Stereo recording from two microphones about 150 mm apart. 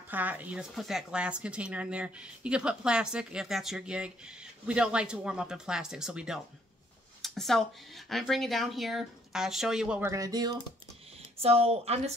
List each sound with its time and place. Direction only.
0.1 s speech: 10° right (ahead or behind)
10.0 s speech: 25° right (ahead or behind)
11.4 s speech: 40° right (ahead or behind)